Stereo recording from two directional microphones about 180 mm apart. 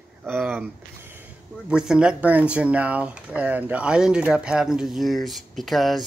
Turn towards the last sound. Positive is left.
turn(degrees=0)  # may be behind; listen again after turning